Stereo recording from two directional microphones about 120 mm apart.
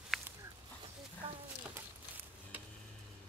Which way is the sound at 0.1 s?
Centre (ahead or behind).